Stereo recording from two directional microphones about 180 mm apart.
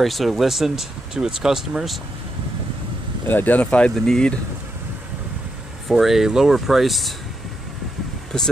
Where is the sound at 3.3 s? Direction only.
10° left (ahead or behind).